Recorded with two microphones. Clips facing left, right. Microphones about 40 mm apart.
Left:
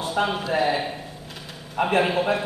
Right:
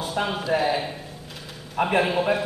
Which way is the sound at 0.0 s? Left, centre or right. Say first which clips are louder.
Left 2 dB; centre.